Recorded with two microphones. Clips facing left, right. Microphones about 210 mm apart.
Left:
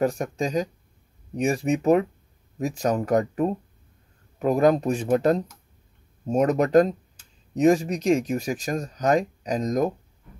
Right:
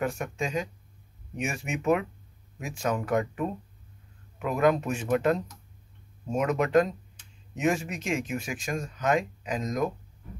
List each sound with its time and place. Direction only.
0.0 s speech: 35° left (ahead or behind)